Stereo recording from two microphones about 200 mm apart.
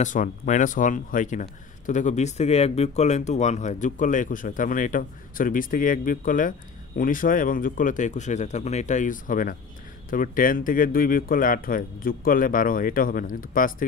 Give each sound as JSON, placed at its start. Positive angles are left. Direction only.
{"t": 0.0, "sound": "speech", "side_deg": 40}